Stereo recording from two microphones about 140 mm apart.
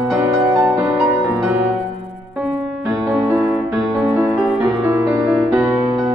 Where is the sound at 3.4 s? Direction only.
Centre (ahead or behind).